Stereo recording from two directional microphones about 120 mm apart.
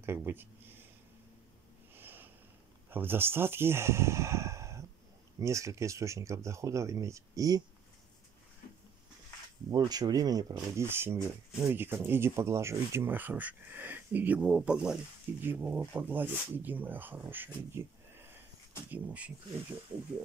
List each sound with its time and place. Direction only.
0.0 s speech: 20° right (ahead or behind)
2.0 s a sound: 15° right (ahead or behind)
2.9 s speech: 15° right (ahead or behind)
9.7 s speech: 35° right (ahead or behind)
10.6 s speech: 20° right (ahead or behind)